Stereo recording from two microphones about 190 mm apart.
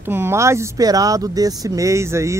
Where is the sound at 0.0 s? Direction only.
10° right (ahead or behind).